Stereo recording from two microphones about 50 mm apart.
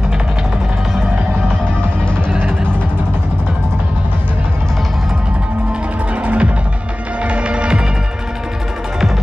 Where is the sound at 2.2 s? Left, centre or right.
Right.